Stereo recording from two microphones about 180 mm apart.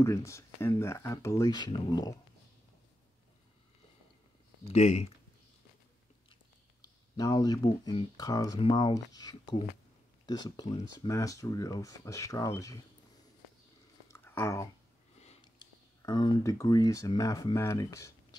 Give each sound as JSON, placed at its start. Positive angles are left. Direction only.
{"t": 0.0, "sound": "speech", "side_deg": 15}
{"t": 4.6, "sound": "speech", "side_deg": 35}
{"t": 7.2, "sound": "speech", "side_deg": 20}
{"t": 14.0, "sound": "a sound", "side_deg": 15}
{"t": 15.4, "sound": "speech", "side_deg": 25}